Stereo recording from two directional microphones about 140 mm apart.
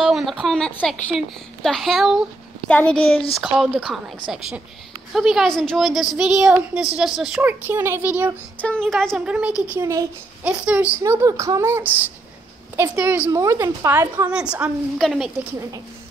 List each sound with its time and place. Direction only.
0.0 s a child's voice: centre (ahead or behind)
7.4 s a woman's voice: 15° right (ahead or behind)
8.5 s speech: 5° left (ahead or behind)
9.8 s speech: 20° right (ahead or behind)
10.4 s a woman's voice: 10° right (ahead or behind)
11.0 s a woman's voice: 20° right (ahead or behind); by 15.3 s centre (ahead or behind)